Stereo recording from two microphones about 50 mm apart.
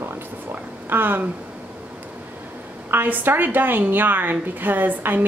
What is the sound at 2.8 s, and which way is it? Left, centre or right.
A woman's voice, right.